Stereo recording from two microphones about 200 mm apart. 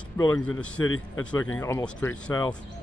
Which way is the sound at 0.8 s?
90° left.